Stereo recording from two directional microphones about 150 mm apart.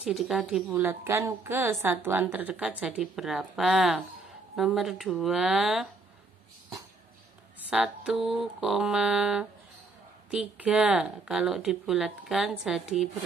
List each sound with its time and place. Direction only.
0.0 s speech: centre (ahead or behind)
0.7 s a woman's voice: 15° right (ahead or behind)
7.7 s speech: 5° right (ahead or behind)